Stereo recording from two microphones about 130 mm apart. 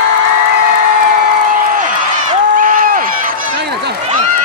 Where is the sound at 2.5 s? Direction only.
90° right.